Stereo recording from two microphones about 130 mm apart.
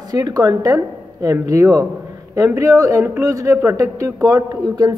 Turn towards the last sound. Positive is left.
turn(degrees=-30)  # may be behind; listen again after turning